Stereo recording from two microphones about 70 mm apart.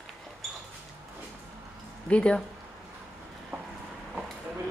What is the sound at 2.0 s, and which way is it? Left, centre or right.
Speech, centre.